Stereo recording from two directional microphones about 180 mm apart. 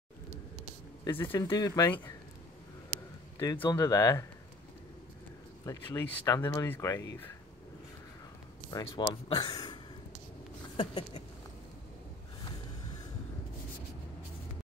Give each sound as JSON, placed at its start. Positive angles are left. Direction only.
{"t": 1.0, "sound": "speech", "side_deg": 10}
{"t": 1.5, "sound": "a sound", "side_deg": 20}
{"t": 3.3, "sound": "speech", "side_deg": 15}
{"t": 5.7, "sound": "speech", "side_deg": 15}
{"t": 8.6, "sound": "speech", "side_deg": 25}
{"t": 10.8, "sound": "a sound", "side_deg": 25}